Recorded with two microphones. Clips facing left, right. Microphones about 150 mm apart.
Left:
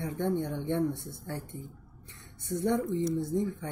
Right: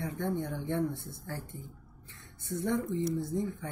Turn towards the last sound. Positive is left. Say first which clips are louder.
# left 3 dB
turn(degrees=20)  # may be behind; listen again after turning